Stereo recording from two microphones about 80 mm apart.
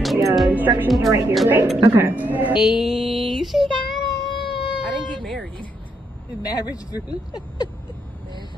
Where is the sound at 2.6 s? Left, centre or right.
Centre.